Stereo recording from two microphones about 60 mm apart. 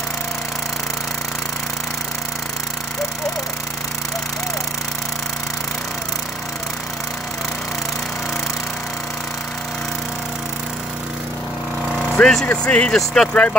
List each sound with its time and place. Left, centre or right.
12.2 s speech: centre
12.6 s speech: left
12.9 s speech: centre
13.3 s speech: left